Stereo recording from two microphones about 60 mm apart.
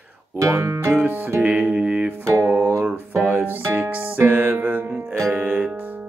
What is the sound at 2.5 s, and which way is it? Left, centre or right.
Music, right.